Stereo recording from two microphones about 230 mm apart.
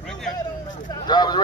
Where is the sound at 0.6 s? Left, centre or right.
Centre.